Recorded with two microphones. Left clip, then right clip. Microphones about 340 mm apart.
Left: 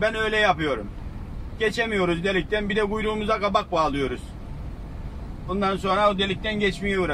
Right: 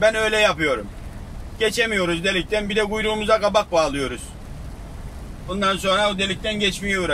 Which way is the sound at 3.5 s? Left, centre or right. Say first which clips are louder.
Right 4 dB; centre.